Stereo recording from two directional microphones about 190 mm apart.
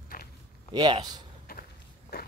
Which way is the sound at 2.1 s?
55° left (ahead or behind).